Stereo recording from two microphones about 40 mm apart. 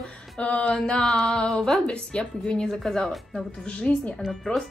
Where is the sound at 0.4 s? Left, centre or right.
Left.